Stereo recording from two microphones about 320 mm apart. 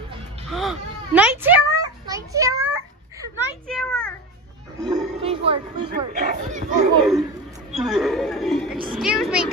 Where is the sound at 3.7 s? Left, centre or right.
Centre.